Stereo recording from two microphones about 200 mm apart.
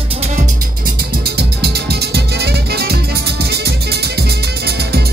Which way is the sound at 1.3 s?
55° right (ahead or behind).